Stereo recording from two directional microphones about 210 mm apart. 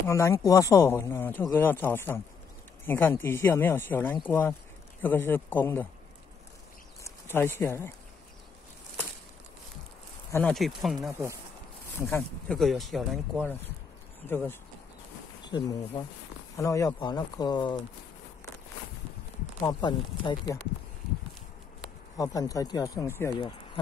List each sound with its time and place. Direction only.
0.0 s speech: 15° left (ahead or behind)
7.3 s speech: 10° left (ahead or behind)
10.3 s speech: 5° left (ahead or behind)
11.1 s speech: 15° right (ahead or behind)
12.0 s speech: 10° left (ahead or behind)
12.5 s speech: centre (ahead or behind); by 17.7 s 20° left (ahead or behind)
19.6 s speech: 20° left (ahead or behind)
22.1 s speech: 15° left (ahead or behind)